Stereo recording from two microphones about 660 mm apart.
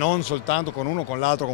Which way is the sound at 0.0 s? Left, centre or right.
Left.